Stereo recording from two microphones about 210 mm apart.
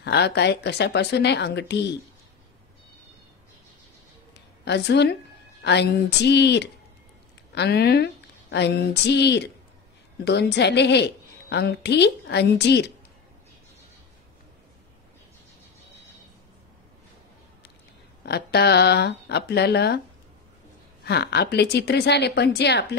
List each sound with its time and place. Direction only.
0.0 s a woman's voice: 50° left (ahead or behind)
4.3 s a sound: 55° left (ahead or behind)
5.6 s a woman's voice: 55° left (ahead or behind)
18.2 s a woman's voice: 50° left (ahead or behind)
21.0 s a woman's voice: 50° left (ahead or behind)